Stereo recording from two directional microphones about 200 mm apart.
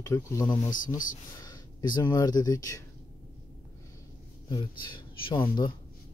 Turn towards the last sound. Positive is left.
turn(degrees=25)  # may be behind; listen again after turning